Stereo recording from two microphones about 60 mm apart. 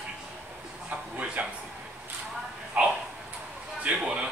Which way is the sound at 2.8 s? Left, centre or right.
Right.